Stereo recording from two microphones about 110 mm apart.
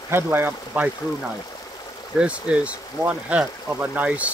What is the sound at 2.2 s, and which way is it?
Speech, 10° right (ahead or behind).